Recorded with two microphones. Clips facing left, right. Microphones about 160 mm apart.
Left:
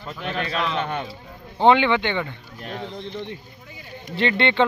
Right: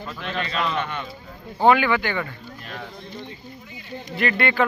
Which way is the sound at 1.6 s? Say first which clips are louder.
Left 1 dB; 25° left (ahead or behind).